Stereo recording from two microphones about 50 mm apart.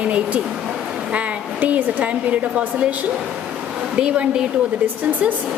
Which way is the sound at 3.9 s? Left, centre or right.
Right.